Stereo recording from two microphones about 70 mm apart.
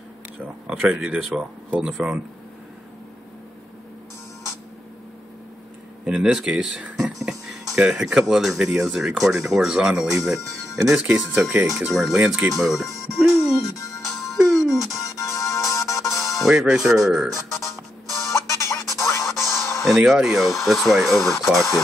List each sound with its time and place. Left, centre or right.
0.7 s speech: centre
6.0 s speech: centre
12.3 s music: centre
15.0 s music: left
16.3 s speech: centre
17.6 s music: centre
18.3 s music: left
20.0 s speech: centre